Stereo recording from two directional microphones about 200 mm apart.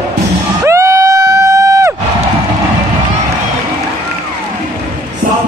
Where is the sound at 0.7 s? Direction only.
15° right (ahead or behind).